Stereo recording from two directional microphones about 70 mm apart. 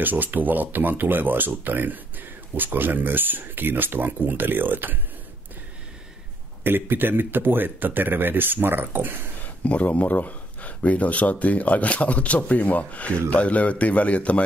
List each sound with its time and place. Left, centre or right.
0.0 s speech: right
6.6 s speech: right
9.7 s speech: left